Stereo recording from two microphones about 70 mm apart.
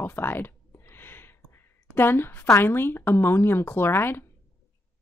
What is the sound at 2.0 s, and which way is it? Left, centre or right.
Speech, left.